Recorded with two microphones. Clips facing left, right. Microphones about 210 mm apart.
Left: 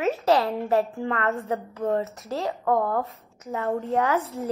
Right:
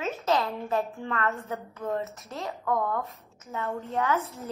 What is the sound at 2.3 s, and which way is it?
A woman's voice, 35° left (ahead or behind).